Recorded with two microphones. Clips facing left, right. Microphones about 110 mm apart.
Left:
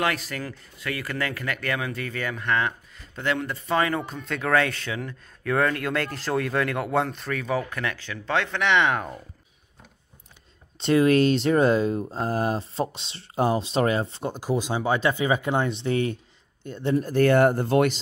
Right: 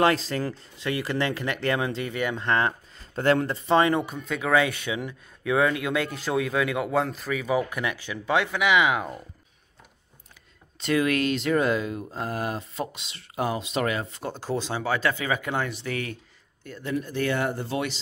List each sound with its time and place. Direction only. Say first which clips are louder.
0.0 s speech: right 5 dB; 30° right (ahead or behind)
3.6 s speech: right 3 dB; 25° right (ahead or behind)
4.0 s speech: even; 5° right (ahead or behind)
10.8 s speech: left 5 dB; 30° left (ahead or behind)
14.3 s speech: left 2 dB; 15° left (ahead or behind)
17.0 s speech: left 9 dB; 45° left (ahead or behind)